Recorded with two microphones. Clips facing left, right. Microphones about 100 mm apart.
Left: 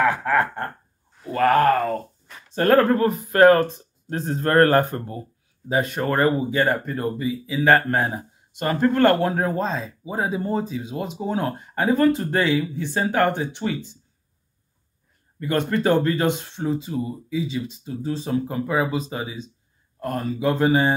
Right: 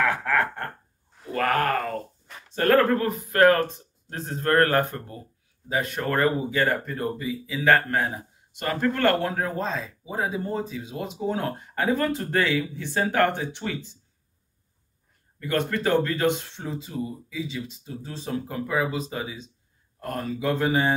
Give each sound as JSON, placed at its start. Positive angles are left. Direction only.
{"t": 0.0, "sound": "a sound", "side_deg": 20}
{"t": 1.3, "sound": "groan", "side_deg": 25}
{"t": 2.5, "sound": "speech", "side_deg": 25}
{"t": 15.3, "sound": "speech", "side_deg": 25}